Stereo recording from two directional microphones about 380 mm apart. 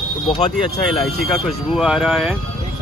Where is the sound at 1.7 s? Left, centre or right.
Centre.